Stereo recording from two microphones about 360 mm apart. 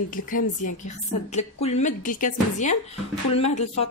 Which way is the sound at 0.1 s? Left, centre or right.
Left.